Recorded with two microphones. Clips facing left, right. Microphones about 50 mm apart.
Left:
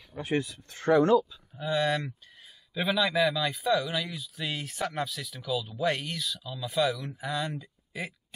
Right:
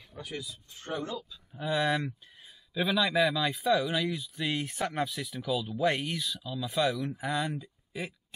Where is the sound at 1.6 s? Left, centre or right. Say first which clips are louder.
Left 1 dB; centre.